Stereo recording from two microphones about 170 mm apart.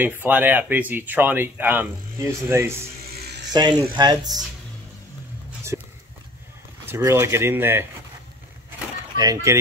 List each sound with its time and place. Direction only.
0.0 s speech: 10° right (ahead or behind)
3.5 s speech: 25° right (ahead or behind)
5.7 s dog: 15° right (ahead or behind)
7.0 s speech: 15° right (ahead or behind)
9.1 s speech: 20° right (ahead or behind)